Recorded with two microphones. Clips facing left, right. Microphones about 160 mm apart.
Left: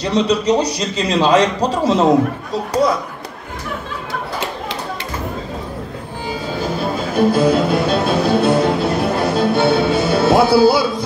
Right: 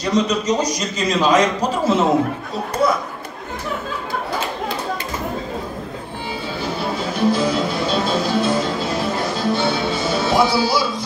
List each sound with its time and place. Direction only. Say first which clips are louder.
0.1 s a man's voice: left 3 dB; 30° left (ahead or behind)
7.0 s music: left 4 dB; 55° left (ahead or behind)